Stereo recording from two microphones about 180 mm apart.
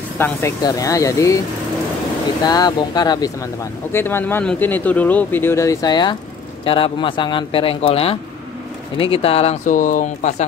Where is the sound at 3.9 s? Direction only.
10° left (ahead or behind).